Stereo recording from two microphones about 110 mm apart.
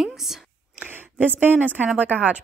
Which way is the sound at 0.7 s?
15° right (ahead or behind).